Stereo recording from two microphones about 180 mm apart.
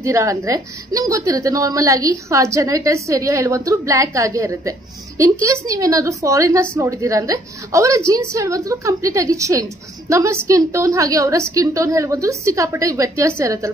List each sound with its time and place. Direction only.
0.0 s a woman's voice: 15° right (ahead or behind)